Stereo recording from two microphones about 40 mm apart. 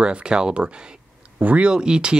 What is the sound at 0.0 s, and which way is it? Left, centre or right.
Speech, right.